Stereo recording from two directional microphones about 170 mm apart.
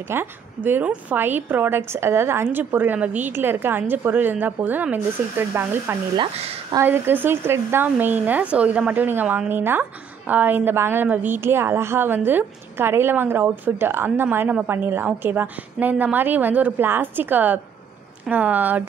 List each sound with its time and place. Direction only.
0.1 s speech: 10° right (ahead or behind)
6.1 s speech: 35° right (ahead or behind)
6.7 s speech: 15° right (ahead or behind)